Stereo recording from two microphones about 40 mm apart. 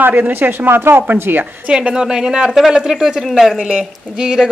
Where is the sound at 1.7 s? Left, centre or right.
Right; by 3.5 s centre.